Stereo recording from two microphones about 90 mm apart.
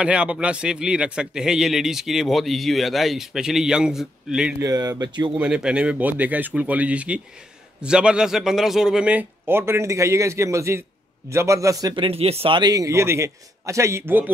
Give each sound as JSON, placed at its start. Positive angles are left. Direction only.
{"t": 0.0, "sound": "a man's voice", "side_deg": -10}
{"t": 4.6, "sound": "speech", "side_deg": -40}
{"t": 5.4, "sound": "speech", "side_deg": -10}
{"t": 9.5, "sound": "a man's voice", "side_deg": -25}
{"t": 11.9, "sound": "speech", "side_deg": -80}
{"t": 12.7, "sound": "a man's voice", "side_deg": -35}